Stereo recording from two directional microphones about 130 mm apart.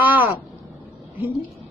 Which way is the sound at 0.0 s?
15° right (ahead or behind).